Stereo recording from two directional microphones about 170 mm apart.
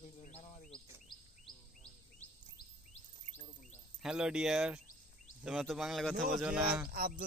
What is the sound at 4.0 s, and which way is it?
Speech, 5° right (ahead or behind).